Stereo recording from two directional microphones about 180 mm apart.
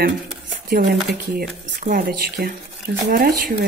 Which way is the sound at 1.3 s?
55° right (ahead or behind).